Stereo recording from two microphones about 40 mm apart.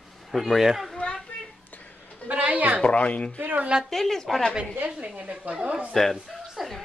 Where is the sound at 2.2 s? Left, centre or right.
Right.